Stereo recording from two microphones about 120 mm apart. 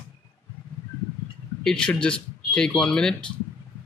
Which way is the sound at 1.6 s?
5° left (ahead or behind).